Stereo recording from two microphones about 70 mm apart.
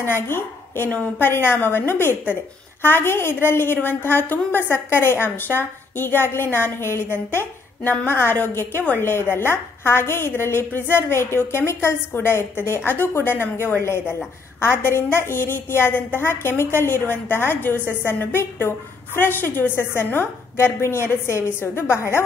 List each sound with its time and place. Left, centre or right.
0.0 s a woman's voice: left